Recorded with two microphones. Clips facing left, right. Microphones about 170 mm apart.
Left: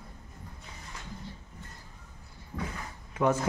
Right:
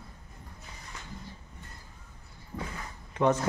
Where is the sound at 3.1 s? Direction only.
5° left (ahead or behind).